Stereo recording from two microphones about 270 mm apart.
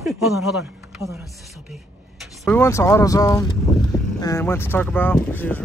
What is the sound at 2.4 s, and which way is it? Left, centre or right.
Speech, centre.